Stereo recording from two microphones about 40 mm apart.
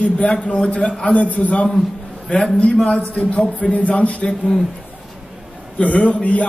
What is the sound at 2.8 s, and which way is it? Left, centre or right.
A man's voice, left.